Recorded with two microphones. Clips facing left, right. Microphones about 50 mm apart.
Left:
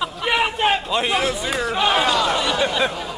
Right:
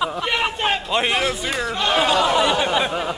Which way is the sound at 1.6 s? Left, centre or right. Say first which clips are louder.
Left 2 dB; centre.